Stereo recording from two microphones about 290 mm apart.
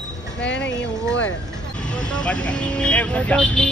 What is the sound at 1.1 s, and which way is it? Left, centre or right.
Speech, centre.